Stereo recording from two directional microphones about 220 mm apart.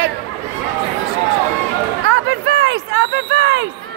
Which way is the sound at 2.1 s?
60° right (ahead or behind).